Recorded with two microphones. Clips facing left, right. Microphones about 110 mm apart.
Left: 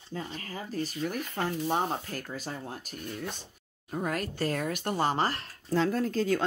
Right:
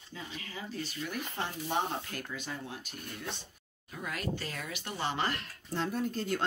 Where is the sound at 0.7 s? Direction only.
45° left (ahead or behind).